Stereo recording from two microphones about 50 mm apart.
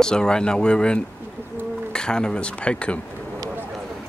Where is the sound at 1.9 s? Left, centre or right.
Centre.